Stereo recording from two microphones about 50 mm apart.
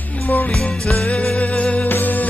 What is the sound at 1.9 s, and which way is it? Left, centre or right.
Music, left.